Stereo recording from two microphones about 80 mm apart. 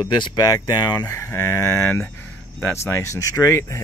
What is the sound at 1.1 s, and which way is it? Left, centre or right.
Speech, left.